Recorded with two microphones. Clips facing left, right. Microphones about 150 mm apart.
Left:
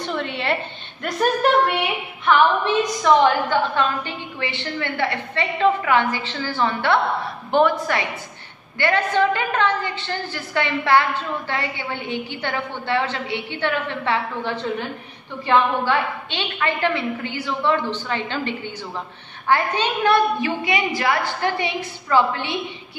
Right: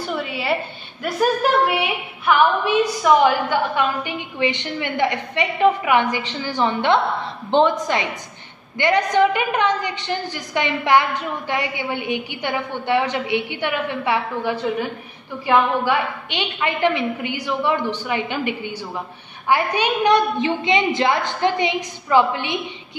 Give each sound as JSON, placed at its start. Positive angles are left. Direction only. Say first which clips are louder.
{"t": 0.0, "sound": "a woman's voice", "louder": "even", "side_deg": -5}
{"t": 1.7, "sound": "a woman's voice", "louder": "right 1 dB", "side_deg": -5}